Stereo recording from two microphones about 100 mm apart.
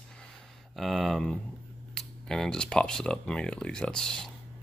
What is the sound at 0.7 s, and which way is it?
Speech, centre (ahead or behind).